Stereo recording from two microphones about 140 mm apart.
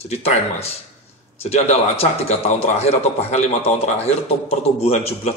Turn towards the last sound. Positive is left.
turn(degrees=50)  # may be behind; listen again after turning